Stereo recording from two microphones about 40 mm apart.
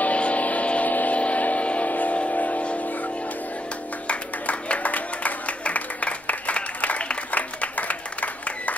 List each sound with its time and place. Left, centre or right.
0.0 s music: left
2.1 s a sound: left
4.1 s music: left